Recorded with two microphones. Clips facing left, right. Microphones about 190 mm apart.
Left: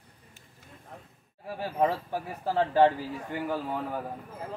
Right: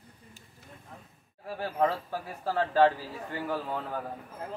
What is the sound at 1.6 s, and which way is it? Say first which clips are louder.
A man's voice: left 1 dB; 15° left (ahead or behind).